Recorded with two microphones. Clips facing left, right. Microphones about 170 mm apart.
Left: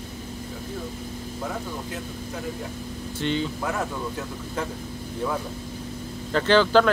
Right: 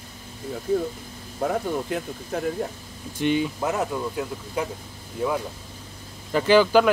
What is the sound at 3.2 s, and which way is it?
Speech, 15° right (ahead or behind).